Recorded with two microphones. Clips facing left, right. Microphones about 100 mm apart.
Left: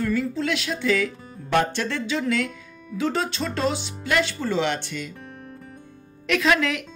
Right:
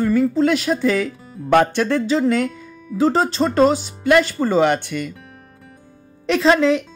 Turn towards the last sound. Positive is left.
turn(degrees=-30)  # may be behind; listen again after turning